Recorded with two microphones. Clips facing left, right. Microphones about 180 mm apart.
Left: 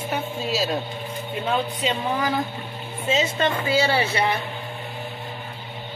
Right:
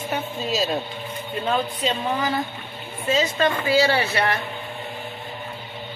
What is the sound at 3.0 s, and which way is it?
Speech, 25° left (ahead or behind).